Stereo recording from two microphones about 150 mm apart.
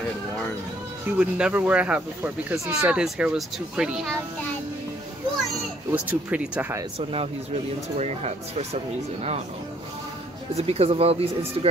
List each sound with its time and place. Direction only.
1.1 s speech: 10° right (ahead or behind)
5.9 s speech: 10° right (ahead or behind)
7.0 s speech: 40° right (ahead or behind)
10.5 s speech: 40° right (ahead or behind)